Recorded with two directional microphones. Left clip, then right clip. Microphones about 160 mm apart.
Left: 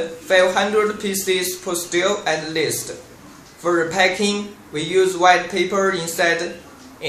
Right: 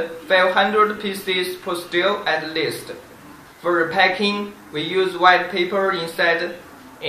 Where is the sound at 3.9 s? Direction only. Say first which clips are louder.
Even; 50° left (ahead or behind).